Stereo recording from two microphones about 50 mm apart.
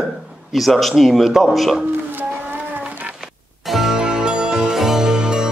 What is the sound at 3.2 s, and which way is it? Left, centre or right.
Music, centre.